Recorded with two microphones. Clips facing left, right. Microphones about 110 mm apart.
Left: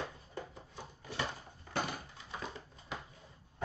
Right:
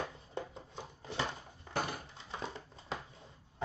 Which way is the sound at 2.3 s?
30° right (ahead or behind).